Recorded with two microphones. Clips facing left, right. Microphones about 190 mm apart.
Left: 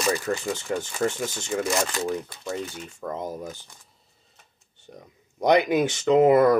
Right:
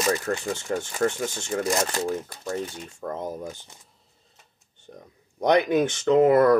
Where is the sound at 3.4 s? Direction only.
25° right (ahead or behind).